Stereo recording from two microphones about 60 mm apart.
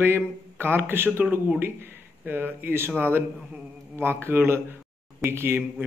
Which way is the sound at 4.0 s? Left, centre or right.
Right.